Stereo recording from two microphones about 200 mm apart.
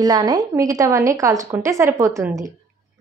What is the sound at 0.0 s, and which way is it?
A woman's voice, 20° right (ahead or behind).